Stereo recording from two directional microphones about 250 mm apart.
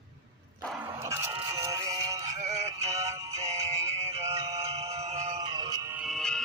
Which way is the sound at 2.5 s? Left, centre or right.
Right.